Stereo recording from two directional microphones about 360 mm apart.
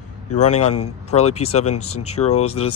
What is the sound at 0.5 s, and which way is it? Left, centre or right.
Speech, left.